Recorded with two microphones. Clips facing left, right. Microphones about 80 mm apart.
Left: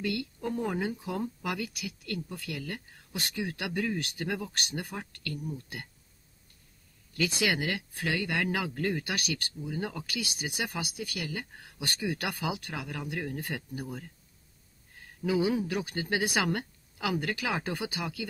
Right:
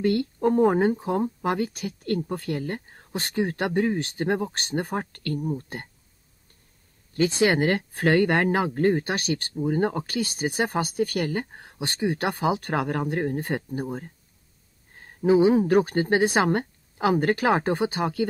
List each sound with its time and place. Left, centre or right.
0.0 s speech: right
7.2 s speech: right
9.6 s speech: right